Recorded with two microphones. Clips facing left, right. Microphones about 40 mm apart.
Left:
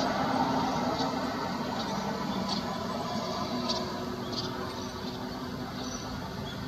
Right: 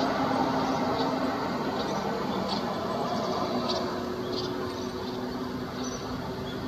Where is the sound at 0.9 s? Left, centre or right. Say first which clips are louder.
Right 3 dB; centre.